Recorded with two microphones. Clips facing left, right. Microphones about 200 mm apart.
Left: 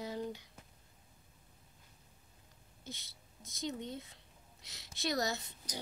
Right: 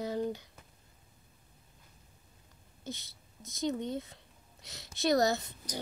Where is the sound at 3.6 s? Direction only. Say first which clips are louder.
Right 7 dB; 45° right (ahead or behind).